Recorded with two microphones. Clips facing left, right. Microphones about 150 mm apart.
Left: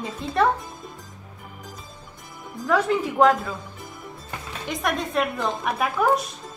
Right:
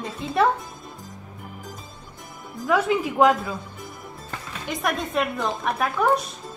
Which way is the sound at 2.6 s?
5° right (ahead or behind).